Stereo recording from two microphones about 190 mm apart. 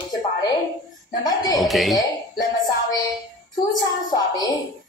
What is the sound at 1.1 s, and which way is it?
Speech, 20° left (ahead or behind).